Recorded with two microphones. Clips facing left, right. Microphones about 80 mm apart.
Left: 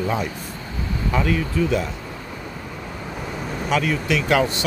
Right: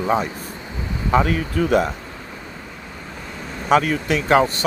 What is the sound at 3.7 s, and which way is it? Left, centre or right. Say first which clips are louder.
Speech: right 4 dB; right.